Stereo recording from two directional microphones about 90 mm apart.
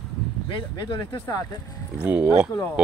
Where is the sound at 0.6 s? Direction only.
55° left (ahead or behind).